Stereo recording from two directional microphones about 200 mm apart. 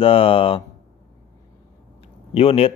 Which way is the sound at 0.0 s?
25° left (ahead or behind).